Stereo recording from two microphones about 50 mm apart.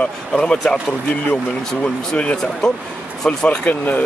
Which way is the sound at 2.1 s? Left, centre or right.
Left.